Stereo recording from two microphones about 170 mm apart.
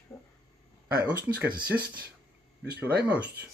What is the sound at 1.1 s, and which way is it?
Speech, 70° right (ahead or behind).